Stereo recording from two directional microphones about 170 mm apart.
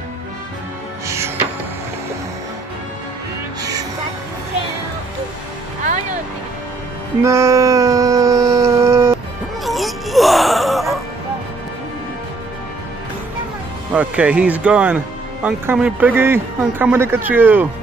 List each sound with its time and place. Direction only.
1.0 s music: 15° right (ahead or behind)
7.2 s a sound: 15° right (ahead or behind)
9.7 s music: centre (ahead or behind)
13.9 s a man's voice: 5° right (ahead or behind)